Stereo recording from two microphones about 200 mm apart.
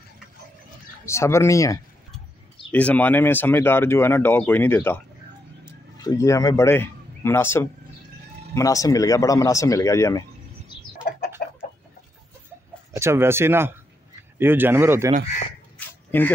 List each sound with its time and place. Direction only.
1.0 s speech: 15° left (ahead or behind)
6.0 s speech: 15° left (ahead or behind)
11.4 s chicken: 50° left (ahead or behind)
12.9 s speech: 15° right (ahead or behind)
16.1 s speech: 10° left (ahead or behind)